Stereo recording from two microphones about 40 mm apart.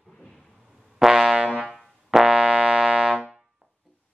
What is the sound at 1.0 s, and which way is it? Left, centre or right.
Brass instrument, centre.